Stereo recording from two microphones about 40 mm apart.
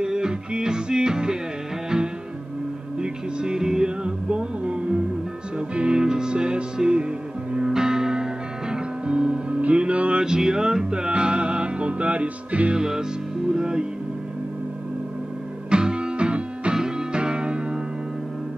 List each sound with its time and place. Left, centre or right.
0.0 s music: centre
3.0 s music: right
4.0 s music: right
7.6 s music: centre; by 10.2 s right
10.2 s music: centre
10.9 s music: right
12.7 s music: centre
15.7 s music: right
16.7 s music: centre